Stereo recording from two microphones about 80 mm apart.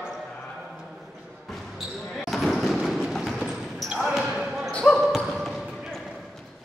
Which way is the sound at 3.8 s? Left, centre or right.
Centre.